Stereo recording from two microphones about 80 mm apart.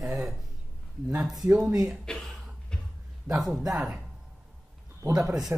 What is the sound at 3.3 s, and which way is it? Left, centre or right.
Speech, centre.